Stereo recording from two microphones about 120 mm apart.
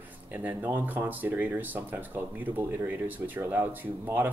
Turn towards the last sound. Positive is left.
turn(degrees=-15)  # may be behind; listen again after turning